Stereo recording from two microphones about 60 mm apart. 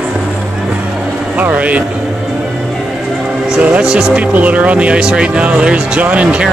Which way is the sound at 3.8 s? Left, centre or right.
Centre.